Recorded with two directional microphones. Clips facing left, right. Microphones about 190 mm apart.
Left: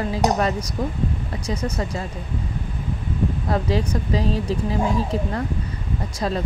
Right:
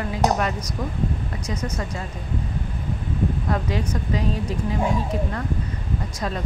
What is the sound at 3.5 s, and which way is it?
Speech, 35° left (ahead or behind).